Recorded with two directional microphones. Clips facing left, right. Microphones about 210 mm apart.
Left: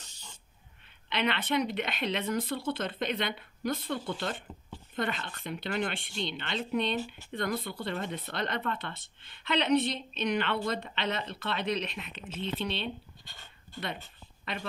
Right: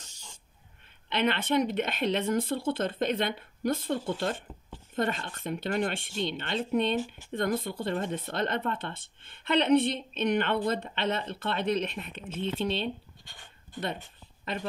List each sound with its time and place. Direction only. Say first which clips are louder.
0.1 s a sound: even; 10° right (ahead or behind)
1.2 s speech: right 3 dB; 45° right (ahead or behind)
13.3 s dog: right 1 dB; 15° right (ahead or behind)